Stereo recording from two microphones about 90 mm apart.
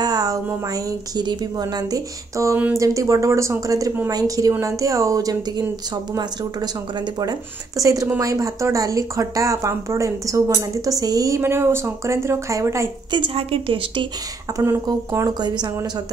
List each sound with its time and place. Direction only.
0.0 s a sound: 45° right (ahead or behind)
1.1 s a woman's voice: 50° right (ahead or behind)
2.5 s speech: 25° right (ahead or behind)
2.8 s speech: 35° right (ahead or behind)
7.2 s speech: 45° right (ahead or behind)
13.1 s a woman's voice: 80° right
14.9 s a woman's voice: 45° right (ahead or behind)